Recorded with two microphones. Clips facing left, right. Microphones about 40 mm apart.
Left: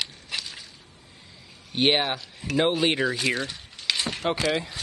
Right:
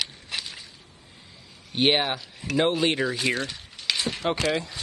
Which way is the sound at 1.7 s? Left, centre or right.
Centre.